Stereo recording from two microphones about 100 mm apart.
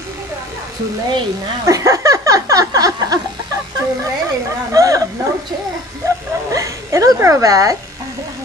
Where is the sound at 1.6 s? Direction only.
35° right (ahead or behind).